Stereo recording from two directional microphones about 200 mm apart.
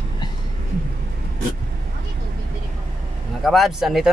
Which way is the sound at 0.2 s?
20° left (ahead or behind).